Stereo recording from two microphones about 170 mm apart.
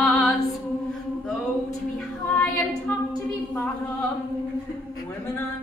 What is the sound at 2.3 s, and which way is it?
Female singing, 10° left (ahead or behind).